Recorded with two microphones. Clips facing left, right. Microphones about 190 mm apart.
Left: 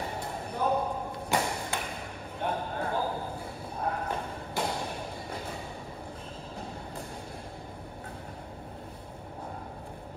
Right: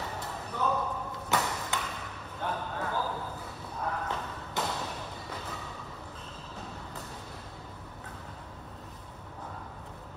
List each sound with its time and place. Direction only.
0.0 s arrow: 25° left (ahead or behind)
3.8 s thump: 30° left (ahead or behind)